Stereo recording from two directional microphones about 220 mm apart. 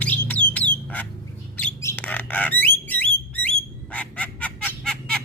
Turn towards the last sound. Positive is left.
turn(degrees=5)  # may be behind; listen again after turning